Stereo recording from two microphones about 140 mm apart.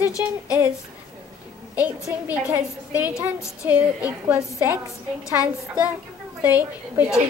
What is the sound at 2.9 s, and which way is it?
A woman's voice, 10° right (ahead or behind).